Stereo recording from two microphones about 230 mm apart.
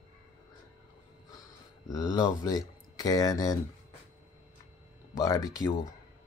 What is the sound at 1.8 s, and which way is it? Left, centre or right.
Speech, centre.